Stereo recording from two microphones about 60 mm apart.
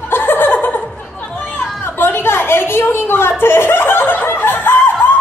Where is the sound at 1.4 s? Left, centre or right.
Left.